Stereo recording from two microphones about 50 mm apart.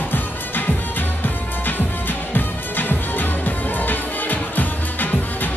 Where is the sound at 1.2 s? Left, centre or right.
Left.